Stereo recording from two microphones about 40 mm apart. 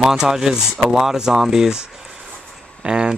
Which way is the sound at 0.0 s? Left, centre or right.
Centre.